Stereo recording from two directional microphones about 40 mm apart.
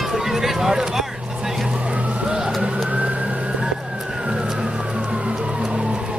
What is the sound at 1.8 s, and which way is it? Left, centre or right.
Vehicle, right.